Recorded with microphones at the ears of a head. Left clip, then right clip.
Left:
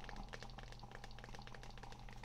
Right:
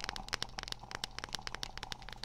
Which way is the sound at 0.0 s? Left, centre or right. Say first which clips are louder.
Right 13 dB; right.